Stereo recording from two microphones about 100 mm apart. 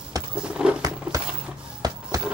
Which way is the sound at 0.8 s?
35° right (ahead or behind).